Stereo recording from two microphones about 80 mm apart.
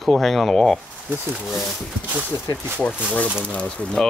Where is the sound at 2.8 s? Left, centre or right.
Centre.